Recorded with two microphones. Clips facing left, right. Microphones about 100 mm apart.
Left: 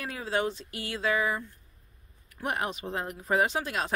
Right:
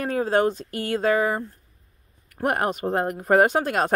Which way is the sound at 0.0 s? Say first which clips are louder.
Right 9 dB; 45° right (ahead or behind).